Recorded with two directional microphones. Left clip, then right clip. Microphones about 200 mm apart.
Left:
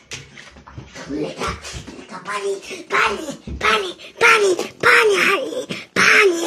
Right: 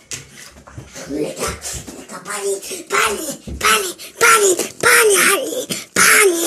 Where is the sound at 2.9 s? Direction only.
25° right (ahead or behind).